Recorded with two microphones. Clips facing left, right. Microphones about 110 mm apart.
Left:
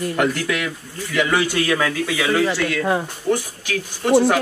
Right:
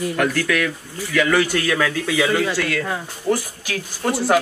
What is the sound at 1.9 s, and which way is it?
Speech, centre (ahead or behind).